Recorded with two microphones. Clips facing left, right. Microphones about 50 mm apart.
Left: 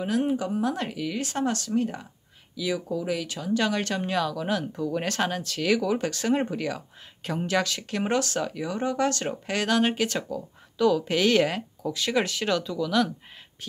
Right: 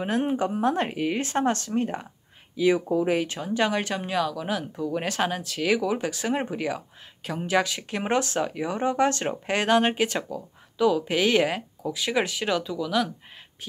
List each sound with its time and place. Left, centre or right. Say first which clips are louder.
0.0 s speech: right 1 dB; right; by 13.1 s centre